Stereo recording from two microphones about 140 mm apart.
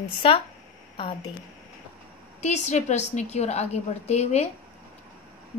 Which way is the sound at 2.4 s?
55° left (ahead or behind).